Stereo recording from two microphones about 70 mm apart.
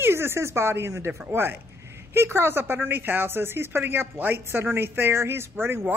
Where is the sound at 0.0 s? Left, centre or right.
Right.